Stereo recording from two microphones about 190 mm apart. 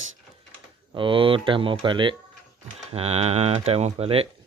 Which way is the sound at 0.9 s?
25° right (ahead or behind).